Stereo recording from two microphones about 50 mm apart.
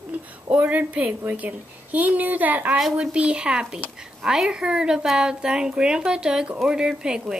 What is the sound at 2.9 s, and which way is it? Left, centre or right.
Speech, right.